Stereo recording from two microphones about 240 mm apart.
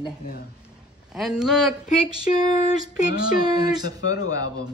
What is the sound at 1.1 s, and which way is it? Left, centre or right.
Speech, centre.